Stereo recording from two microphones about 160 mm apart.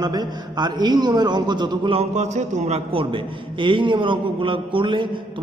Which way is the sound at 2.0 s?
45° right (ahead or behind).